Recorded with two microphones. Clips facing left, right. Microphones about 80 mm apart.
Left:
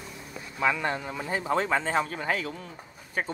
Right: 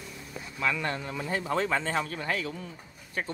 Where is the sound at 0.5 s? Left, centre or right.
Left.